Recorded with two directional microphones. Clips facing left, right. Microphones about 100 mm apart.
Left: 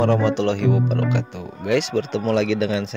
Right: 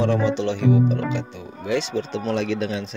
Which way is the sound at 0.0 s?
55° left (ahead or behind).